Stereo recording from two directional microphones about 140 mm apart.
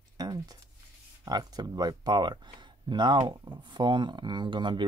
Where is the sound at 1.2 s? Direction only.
30° right (ahead or behind).